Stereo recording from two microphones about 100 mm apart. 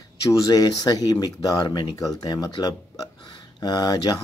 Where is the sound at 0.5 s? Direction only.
40° left (ahead or behind).